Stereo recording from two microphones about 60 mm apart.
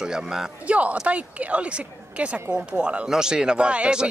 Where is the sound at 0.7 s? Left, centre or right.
Right.